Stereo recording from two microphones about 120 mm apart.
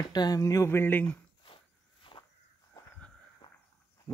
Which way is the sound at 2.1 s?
45° left (ahead or behind).